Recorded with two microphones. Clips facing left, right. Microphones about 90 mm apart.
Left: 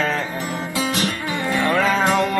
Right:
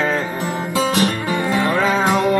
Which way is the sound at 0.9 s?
45° right (ahead or behind).